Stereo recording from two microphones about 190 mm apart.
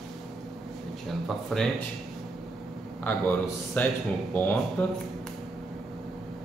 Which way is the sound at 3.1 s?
10° left (ahead or behind).